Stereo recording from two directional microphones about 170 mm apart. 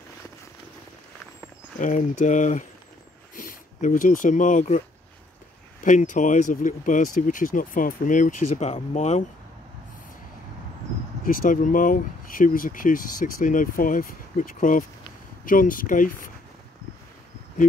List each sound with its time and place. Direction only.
1.8 s speech: 50° left (ahead or behind)
5.9 s speech: 50° left (ahead or behind)
11.2 s speech: 50° left (ahead or behind)